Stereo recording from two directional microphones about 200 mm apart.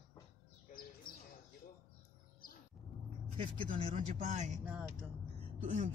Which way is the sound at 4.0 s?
35° right (ahead or behind).